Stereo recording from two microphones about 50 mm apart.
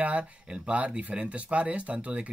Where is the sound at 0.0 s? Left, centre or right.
Right.